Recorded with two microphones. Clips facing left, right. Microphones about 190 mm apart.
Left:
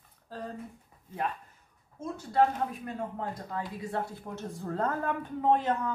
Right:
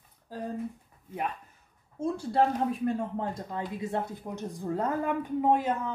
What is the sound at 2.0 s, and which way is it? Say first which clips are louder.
Speech: right 1 dB; 30° right (ahead or behind).